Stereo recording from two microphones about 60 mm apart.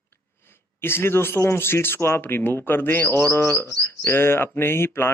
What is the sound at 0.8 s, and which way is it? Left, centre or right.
Speech, left.